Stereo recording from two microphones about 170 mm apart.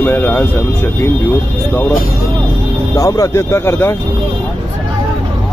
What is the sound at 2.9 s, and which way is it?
Speech, 20° left (ahead or behind).